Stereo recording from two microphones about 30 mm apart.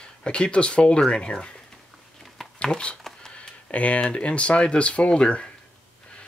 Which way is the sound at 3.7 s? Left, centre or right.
Left.